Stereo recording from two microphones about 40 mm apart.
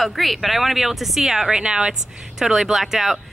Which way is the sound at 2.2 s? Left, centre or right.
Centre.